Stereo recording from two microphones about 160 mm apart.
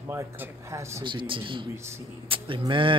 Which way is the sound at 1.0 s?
30° right (ahead or behind).